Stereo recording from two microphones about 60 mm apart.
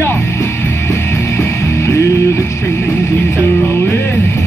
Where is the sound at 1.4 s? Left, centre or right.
Left.